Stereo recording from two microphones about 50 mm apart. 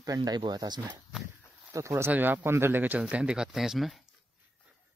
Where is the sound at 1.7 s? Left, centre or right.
Right.